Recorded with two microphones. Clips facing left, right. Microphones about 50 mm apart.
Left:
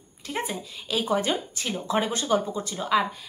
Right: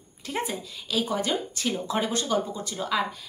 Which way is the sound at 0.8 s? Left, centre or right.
Centre.